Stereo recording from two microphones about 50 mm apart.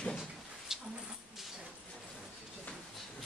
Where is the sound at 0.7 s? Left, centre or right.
Centre.